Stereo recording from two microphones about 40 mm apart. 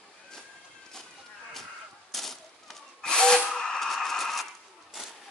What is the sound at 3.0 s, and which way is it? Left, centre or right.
Drill, centre.